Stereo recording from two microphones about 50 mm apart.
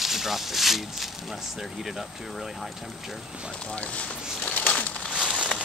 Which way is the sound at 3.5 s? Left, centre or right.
Left.